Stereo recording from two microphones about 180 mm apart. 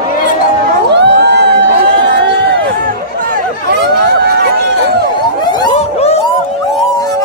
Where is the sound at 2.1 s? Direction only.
70° right (ahead or behind).